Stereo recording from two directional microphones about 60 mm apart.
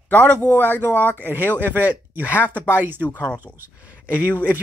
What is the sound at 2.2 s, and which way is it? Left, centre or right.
Speech, left.